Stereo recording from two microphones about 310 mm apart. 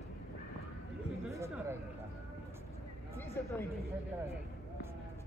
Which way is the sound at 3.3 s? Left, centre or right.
Centre.